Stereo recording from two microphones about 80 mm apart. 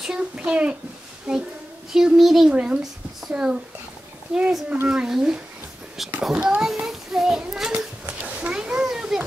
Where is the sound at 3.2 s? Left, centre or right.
Centre.